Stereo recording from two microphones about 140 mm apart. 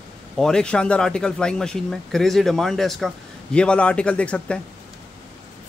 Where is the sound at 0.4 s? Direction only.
5° left (ahead or behind).